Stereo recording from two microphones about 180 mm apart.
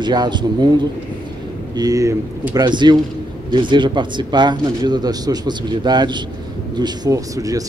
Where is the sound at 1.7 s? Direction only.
20° right (ahead or behind).